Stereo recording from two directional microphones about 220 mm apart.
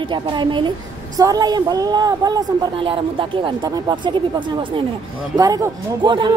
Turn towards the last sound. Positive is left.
turn(degrees=-20)  # may be behind; listen again after turning